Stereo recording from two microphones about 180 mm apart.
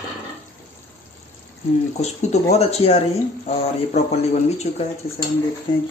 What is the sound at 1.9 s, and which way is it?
Speech, 35° left (ahead or behind).